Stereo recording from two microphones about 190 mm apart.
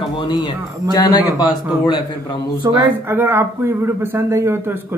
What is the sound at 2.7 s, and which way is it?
Speech, 15° right (ahead or behind).